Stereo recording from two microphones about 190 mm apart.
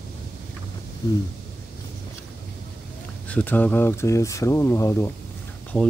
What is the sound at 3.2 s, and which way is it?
Speech, 10° left (ahead or behind).